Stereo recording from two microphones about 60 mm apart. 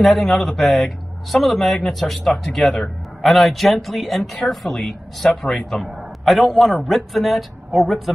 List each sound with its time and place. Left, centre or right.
0.0 s speech: centre